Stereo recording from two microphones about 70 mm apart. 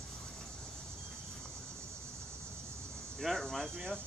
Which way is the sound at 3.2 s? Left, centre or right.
Centre.